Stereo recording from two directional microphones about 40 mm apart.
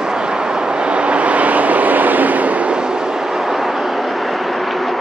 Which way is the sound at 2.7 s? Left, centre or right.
Centre.